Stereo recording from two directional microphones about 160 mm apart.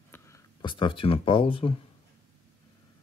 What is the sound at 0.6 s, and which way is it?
Speech, 30° left (ahead or behind).